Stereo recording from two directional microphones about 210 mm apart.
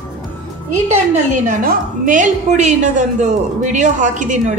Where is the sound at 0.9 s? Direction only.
35° right (ahead or behind).